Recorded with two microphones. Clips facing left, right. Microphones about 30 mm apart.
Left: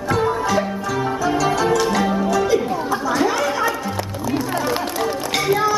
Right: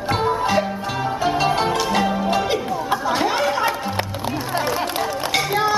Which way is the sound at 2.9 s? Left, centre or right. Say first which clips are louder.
Even; right.